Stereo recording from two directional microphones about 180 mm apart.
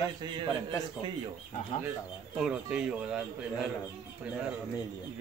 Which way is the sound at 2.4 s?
5° right (ahead or behind).